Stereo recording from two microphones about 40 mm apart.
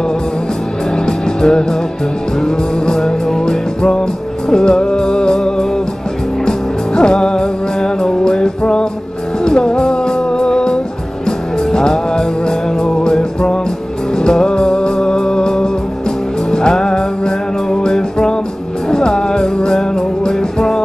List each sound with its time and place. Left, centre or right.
0.9 s music: centre
7.0 s music: centre
16.7 s music: centre